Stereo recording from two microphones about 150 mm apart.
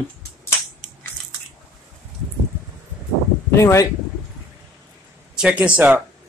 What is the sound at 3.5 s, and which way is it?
Speech, 20° left (ahead or behind).